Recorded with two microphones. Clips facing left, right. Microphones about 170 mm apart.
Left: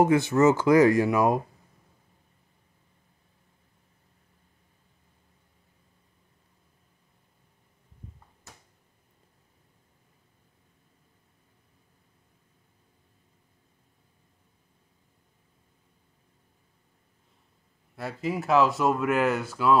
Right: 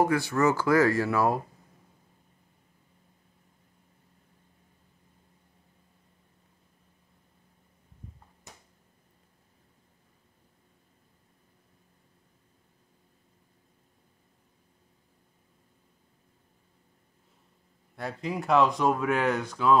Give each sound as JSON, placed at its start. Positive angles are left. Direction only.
{"t": 0.0, "sound": "speech", "side_deg": 20}
{"t": 17.9, "sound": "speech", "side_deg": 0}